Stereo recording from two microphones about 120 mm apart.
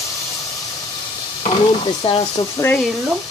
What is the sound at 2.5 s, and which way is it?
Speech, 20° left (ahead or behind).